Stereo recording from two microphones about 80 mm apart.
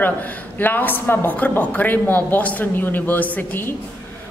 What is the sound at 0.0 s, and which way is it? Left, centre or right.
A woman's voice, left.